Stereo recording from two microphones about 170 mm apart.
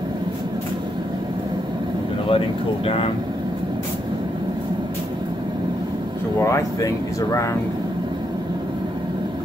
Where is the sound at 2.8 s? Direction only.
35° left (ahead or behind).